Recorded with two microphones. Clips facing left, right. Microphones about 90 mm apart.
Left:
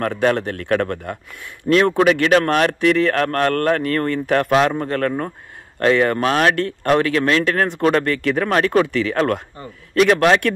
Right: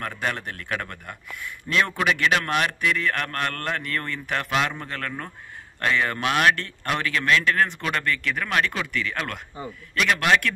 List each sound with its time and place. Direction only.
0.1 s a man's voice: 50° left (ahead or behind)
6.6 s speech: 50° left (ahead or behind)
7.2 s a man's voice: 35° left (ahead or behind)
8.0 s speech: 55° left (ahead or behind)
8.5 s speech: 45° left (ahead or behind)
9.1 s a man's voice: 35° left (ahead or behind)